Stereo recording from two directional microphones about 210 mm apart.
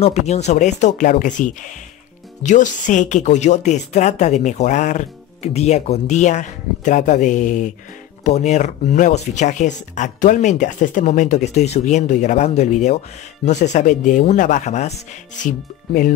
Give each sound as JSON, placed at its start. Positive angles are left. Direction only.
{"t": 0.0, "sound": "speech", "side_deg": 30}